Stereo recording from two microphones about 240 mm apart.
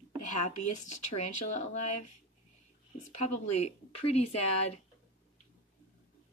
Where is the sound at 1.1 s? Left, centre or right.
Left.